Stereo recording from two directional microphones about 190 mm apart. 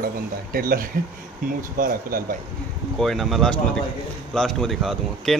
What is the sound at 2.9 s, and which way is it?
Speech, centre (ahead or behind).